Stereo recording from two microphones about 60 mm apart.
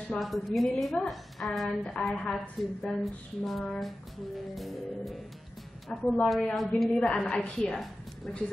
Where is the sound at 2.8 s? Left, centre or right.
Centre.